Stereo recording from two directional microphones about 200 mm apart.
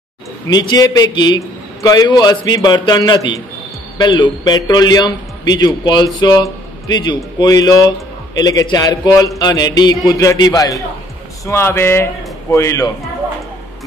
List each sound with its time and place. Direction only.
0.5 s a man's voice: 20° left (ahead or behind)